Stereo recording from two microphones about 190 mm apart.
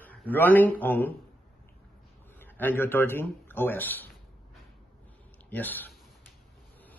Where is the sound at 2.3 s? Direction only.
10° left (ahead or behind).